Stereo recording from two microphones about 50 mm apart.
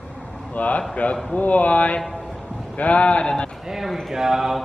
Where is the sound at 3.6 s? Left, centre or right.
Centre.